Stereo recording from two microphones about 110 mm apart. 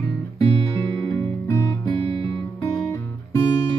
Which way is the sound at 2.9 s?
25° left (ahead or behind).